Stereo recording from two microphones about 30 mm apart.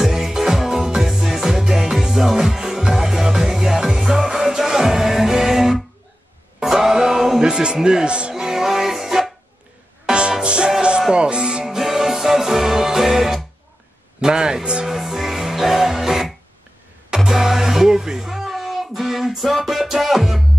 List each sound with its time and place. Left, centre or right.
0.0 s music: centre
1.0 s music: centre
1.3 s music: centre
7.3 s music: right
8.4 s music: centre
10.4 s music: right
11.8 s music: centre
14.2 s speech: right
14.9 s music: centre